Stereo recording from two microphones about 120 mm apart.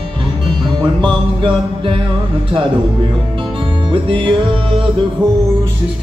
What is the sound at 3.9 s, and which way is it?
Music, 45° right (ahead or behind).